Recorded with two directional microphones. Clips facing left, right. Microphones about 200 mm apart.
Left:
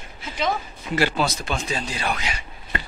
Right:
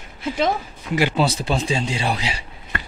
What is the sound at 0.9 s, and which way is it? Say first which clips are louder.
Sigh: right 2 dB; 15° right (ahead or behind).